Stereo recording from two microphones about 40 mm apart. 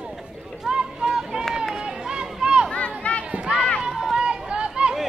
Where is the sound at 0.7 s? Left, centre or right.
Centre.